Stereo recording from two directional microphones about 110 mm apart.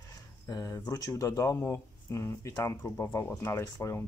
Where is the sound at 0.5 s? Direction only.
35° left (ahead or behind).